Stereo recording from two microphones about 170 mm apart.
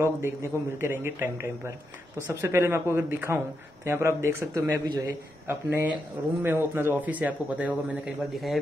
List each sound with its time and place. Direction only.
0.2 s speech: 15° right (ahead or behind)